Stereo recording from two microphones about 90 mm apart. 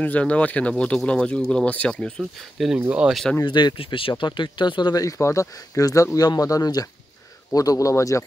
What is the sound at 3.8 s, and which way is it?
Speech, 85° left.